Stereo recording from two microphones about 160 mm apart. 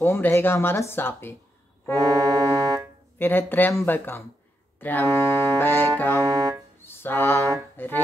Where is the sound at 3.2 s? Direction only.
10° left (ahead or behind).